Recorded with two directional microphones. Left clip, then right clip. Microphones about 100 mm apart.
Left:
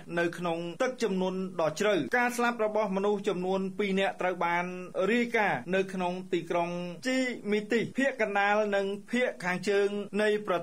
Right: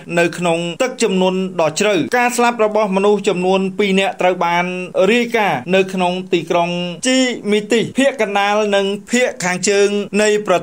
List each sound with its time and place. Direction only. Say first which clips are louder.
0.1 s speech: right 15 dB; 30° right (ahead or behind)